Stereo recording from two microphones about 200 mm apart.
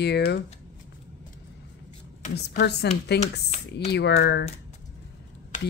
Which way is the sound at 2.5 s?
55° left (ahead or behind).